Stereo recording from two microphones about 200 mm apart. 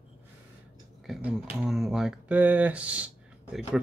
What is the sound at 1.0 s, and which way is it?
Speech, 5° right (ahead or behind).